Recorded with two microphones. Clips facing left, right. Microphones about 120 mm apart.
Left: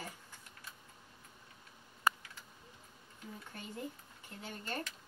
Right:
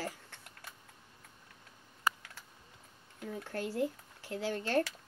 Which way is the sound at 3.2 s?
80° right.